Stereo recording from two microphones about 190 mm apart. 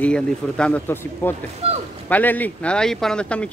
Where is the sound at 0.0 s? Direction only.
5° left (ahead or behind).